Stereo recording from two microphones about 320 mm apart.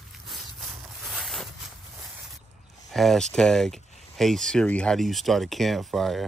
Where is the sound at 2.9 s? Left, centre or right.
Centre.